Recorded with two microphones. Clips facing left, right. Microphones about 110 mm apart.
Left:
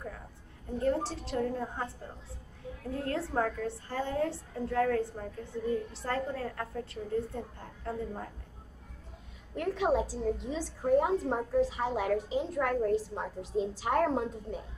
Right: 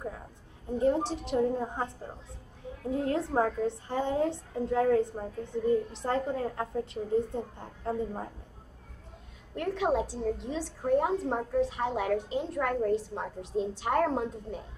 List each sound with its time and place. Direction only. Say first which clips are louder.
0.7 s a woman's voice: right 3 dB; 20° right (ahead or behind)
2.9 s a woman's voice: right 5 dB; 20° right (ahead or behind)
9.6 s a woman's voice: even; centre (ahead or behind)